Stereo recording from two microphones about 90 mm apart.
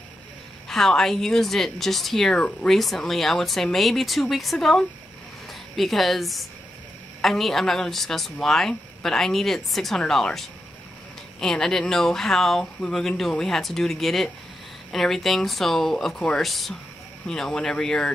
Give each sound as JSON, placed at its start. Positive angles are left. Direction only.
{"t": 0.7, "sound": "a woman's voice", "side_deg": 5}